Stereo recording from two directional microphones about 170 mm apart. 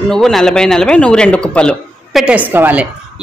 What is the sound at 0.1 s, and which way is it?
A man's voice, centre (ahead or behind).